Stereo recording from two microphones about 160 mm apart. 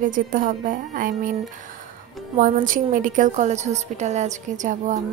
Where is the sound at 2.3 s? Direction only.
60° right (ahead or behind).